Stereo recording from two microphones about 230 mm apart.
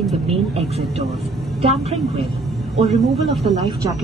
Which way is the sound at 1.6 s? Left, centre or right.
Right.